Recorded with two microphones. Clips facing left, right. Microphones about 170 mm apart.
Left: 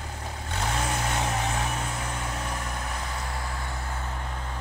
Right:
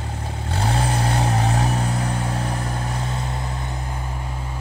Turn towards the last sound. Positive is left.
turn(degrees=-20)  # may be behind; listen again after turning